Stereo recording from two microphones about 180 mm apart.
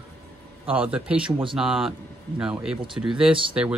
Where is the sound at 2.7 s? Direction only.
25° right (ahead or behind).